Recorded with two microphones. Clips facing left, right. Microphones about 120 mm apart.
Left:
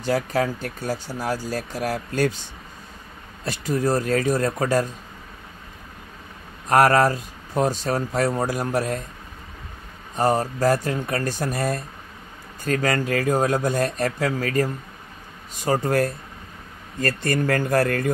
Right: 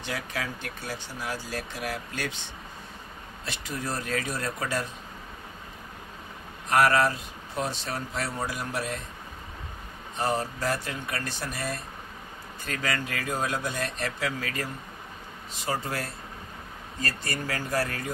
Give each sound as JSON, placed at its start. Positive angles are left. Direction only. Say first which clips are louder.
{"t": 0.0, "sound": "speech", "louder": "left 11 dB", "side_deg": 40}
{"t": 6.7, "sound": "speech", "louder": "left 6 dB", "side_deg": 40}
{"t": 10.1, "sound": "speech", "louder": "left 7 dB", "side_deg": 40}